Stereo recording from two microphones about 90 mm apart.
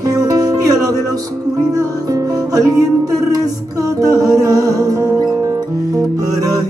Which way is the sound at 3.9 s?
45° right (ahead or behind).